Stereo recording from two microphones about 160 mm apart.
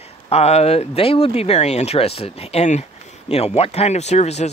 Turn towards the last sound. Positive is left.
turn(degrees=45)  # may be behind; listen again after turning